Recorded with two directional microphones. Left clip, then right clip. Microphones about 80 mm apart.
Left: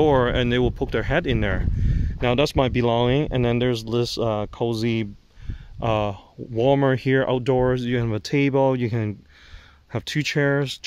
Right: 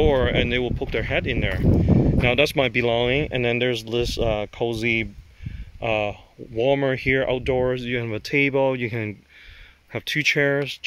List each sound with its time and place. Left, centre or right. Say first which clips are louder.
0.0 s speech: left 1 dB; left
2.2 s speech: left 1 dB; left
5.8 s speech: even; left